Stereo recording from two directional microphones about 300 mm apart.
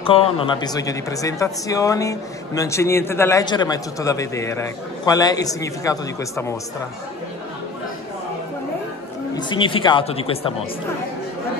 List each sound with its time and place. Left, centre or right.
0.0 s speech: centre
9.3 s speech: centre